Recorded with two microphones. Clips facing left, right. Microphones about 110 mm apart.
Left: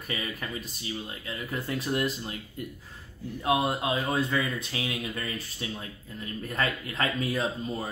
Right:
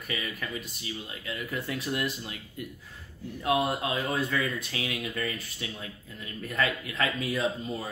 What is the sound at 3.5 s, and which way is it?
Speech, 25° left (ahead or behind).